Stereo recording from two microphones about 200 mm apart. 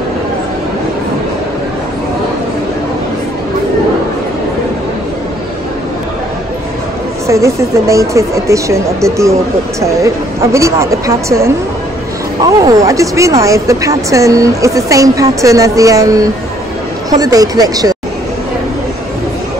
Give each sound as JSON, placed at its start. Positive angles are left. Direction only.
{"t": 7.2, "sound": "speech", "side_deg": -15}
{"t": 12.5, "sound": "speech", "side_deg": -15}